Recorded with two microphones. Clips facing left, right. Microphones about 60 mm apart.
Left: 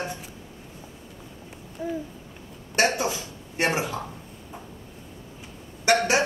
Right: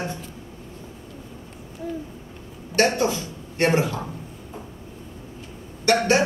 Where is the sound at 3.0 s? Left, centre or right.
Centre.